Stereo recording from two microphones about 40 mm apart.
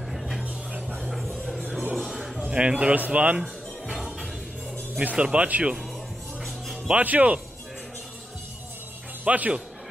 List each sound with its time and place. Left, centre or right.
0.1 s music: centre
0.4 s music: centre
1.0 s a sound: centre
1.7 s music: centre
2.5 s speech: right
3.8 s music: centre
5.1 s speech: right
7.0 s speech: right
9.2 s speech: right